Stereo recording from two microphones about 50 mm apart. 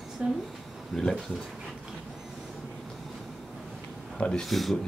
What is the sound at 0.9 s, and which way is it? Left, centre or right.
Speech, centre.